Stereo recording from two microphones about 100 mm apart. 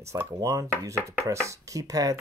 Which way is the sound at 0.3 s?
35° right (ahead or behind).